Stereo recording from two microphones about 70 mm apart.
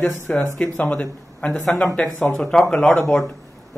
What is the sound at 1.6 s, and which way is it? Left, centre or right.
Speech, centre.